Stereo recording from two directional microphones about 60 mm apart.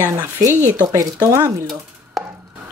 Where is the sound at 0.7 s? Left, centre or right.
Right.